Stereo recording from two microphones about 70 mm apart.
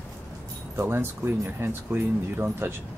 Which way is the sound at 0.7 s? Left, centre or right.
Right.